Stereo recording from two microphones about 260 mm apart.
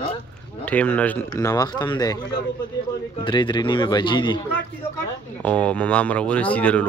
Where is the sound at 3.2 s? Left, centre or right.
Centre.